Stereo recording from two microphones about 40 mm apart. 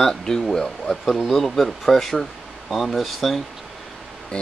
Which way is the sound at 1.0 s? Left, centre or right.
Centre.